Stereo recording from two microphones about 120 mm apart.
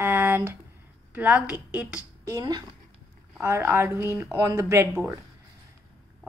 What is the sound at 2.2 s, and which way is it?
Speech, 35° right (ahead or behind).